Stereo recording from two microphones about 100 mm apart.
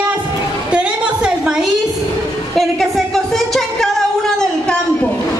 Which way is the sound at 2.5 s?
Centre (ahead or behind).